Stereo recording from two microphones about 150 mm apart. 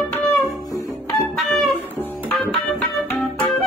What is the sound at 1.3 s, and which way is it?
Music, centre (ahead or behind).